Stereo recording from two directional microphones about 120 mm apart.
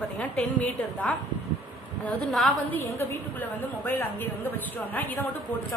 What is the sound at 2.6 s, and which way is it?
A woman's voice, 20° left (ahead or behind).